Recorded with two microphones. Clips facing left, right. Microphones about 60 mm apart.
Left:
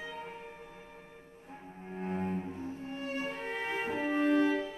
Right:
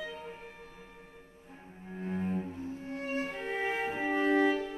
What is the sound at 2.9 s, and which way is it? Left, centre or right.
Music, right.